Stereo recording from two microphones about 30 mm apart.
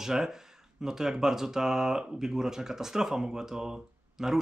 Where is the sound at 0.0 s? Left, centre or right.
Centre.